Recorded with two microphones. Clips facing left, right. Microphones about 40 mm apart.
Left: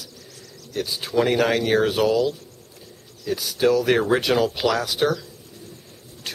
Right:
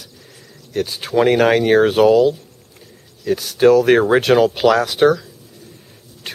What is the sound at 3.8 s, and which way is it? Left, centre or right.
Speech, centre.